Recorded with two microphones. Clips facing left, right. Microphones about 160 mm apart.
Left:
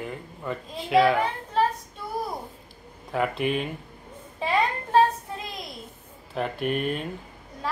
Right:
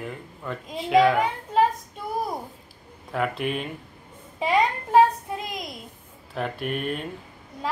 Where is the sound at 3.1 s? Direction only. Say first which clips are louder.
Left 1 dB; centre (ahead or behind).